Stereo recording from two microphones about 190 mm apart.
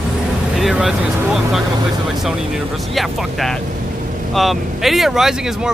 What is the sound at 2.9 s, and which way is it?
Speech, centre (ahead or behind).